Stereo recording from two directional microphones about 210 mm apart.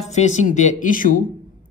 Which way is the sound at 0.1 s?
35° left (ahead or behind).